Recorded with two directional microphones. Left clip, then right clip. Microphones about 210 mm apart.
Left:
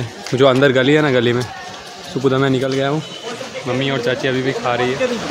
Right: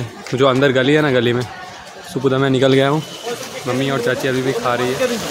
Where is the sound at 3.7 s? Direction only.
Centre (ahead or behind).